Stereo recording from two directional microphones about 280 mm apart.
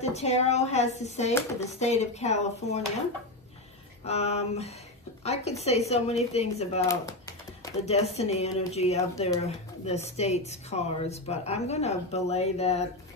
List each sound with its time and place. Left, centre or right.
0.0 s speech: left
4.0 s speech: left
6.9 s typing: centre
7.8 s speech: left